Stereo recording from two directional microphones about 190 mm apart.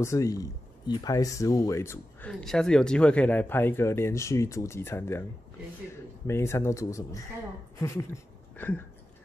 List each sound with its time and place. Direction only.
0.0 s speech: 15° left (ahead or behind)
6.2 s speech: 15° left (ahead or behind)